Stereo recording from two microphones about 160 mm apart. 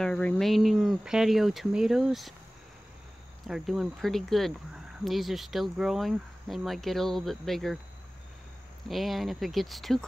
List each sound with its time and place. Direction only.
0.0 s speech: 5° left (ahead or behind)
3.4 s speech: centre (ahead or behind)
8.8 s speech: centre (ahead or behind)